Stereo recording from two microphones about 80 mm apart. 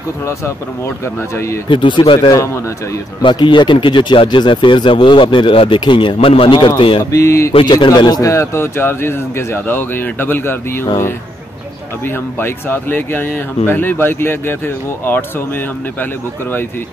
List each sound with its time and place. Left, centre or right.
1.3 s mantra: left
1.7 s speech: left
2.1 s speech: left
3.2 s speech: left
7.1 s mantra: left
7.6 s speech: left
8.2 s speech: left
12.4 s speech: left